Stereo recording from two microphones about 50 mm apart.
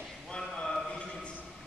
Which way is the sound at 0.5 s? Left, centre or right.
Centre.